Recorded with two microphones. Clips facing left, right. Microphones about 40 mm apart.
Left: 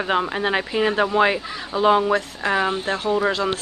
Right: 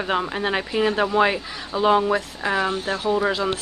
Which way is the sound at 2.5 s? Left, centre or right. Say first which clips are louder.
Left 1 dB; centre.